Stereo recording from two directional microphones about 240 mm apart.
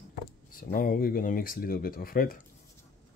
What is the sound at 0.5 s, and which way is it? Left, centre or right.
Speech, left.